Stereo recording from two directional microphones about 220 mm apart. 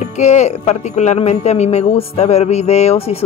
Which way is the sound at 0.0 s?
30° left (ahead or behind).